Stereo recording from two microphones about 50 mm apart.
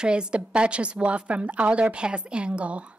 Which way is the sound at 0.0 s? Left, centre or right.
Centre.